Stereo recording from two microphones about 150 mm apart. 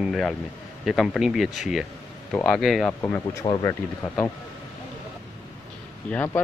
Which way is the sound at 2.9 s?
15° left (ahead or behind).